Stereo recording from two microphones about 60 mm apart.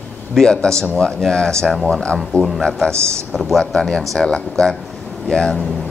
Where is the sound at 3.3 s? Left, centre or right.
Centre.